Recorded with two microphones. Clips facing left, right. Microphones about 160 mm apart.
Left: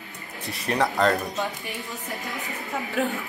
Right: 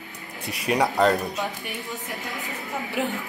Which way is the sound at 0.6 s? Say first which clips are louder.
Right 2 dB; 10° right (ahead or behind).